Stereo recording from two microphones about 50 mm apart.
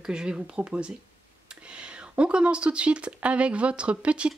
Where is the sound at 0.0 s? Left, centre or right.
Centre.